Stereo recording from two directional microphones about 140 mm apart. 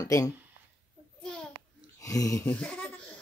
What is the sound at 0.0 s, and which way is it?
Speech, 25° left (ahead or behind).